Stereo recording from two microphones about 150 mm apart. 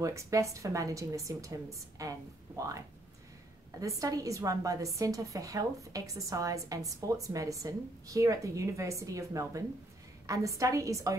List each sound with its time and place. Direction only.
0.0 s a woman's voice: 20° right (ahead or behind)
3.8 s a woman's voice: 20° right (ahead or behind)